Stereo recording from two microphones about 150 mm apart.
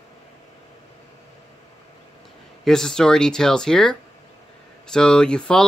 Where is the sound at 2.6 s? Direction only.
5° left (ahead or behind).